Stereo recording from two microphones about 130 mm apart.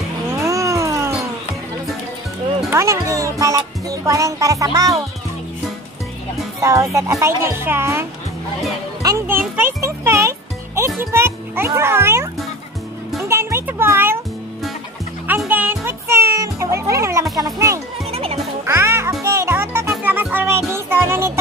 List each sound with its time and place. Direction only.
0.3 s cat: 25° right (ahead or behind)
2.7 s speech: 25° right (ahead or behind)
6.6 s speech: 25° right (ahead or behind)
9.0 s music: 20° right (ahead or behind)
11.0 s a child's voice: 20° right (ahead or behind)
13.3 s music: 20° right (ahead or behind)
15.2 s music: 15° right (ahead or behind)
18.1 s music: 50° right (ahead or behind)
18.7 s music: 20° right (ahead or behind)